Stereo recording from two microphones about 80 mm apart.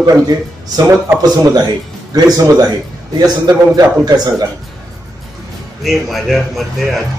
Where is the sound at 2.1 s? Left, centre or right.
Right.